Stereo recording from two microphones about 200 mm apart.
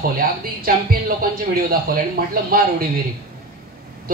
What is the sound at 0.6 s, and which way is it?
Speech, 45° right (ahead or behind).